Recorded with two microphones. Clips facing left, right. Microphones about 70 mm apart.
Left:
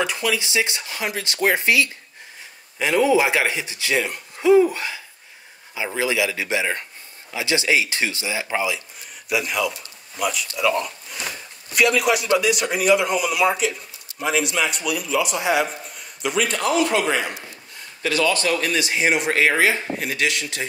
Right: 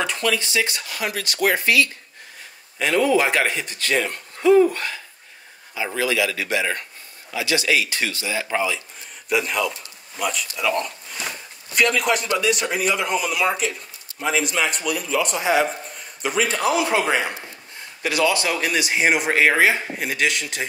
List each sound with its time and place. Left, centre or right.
0.0 s a man's voice: centre
10.6 s a sound: centre
12.4 s speech: centre
16.6 s a man's voice: centre